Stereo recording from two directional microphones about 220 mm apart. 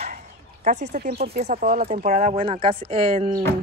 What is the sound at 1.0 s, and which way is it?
Speech, 40° right (ahead or behind).